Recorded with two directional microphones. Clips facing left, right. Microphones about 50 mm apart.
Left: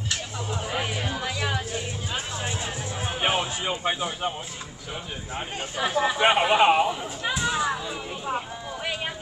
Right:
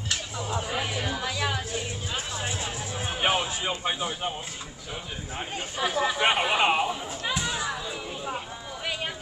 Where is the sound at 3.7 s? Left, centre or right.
Centre.